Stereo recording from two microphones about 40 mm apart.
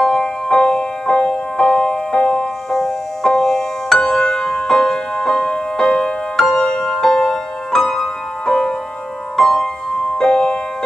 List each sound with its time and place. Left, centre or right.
0.0 s music: centre
2.7 s music: centre